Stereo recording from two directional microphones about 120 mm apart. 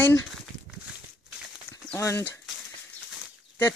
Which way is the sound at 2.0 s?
25° left (ahead or behind).